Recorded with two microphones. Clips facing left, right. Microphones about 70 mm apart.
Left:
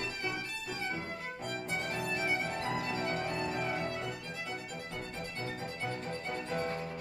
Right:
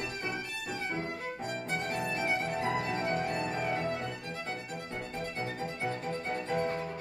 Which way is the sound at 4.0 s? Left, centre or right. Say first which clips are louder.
Right 2 dB; right.